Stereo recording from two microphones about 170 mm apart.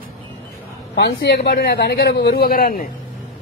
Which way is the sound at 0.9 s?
80° left.